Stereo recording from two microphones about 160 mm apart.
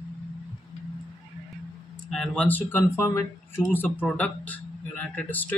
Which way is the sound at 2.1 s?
5° left (ahead or behind).